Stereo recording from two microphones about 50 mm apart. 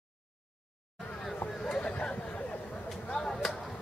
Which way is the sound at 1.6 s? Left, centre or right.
Centre.